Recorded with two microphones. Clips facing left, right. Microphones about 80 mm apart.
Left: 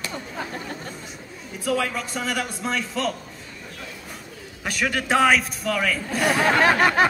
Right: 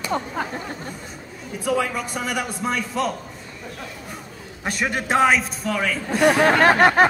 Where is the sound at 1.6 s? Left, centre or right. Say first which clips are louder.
Right 2 dB; centre.